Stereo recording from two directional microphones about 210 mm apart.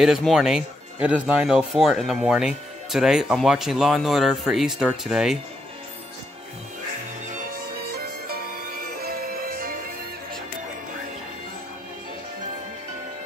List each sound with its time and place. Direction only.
0.0 s speech: centre (ahead or behind)
7.9 s music: 45° right (ahead or behind)